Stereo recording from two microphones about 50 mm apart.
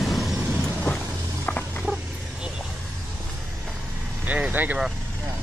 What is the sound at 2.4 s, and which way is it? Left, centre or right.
Vehicle, centre.